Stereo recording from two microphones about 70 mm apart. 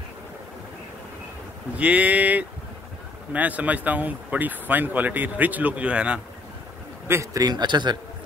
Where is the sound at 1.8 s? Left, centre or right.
Centre.